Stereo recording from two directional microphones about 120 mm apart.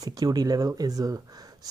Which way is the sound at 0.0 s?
30° right (ahead or behind).